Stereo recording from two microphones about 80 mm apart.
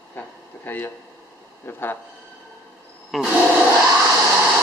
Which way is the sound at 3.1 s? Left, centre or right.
Centre.